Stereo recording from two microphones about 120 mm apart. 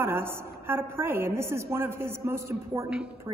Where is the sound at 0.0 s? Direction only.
20° right (ahead or behind).